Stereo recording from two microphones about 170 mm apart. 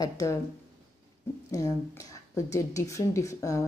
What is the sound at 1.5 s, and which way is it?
Speech, 20° left (ahead or behind).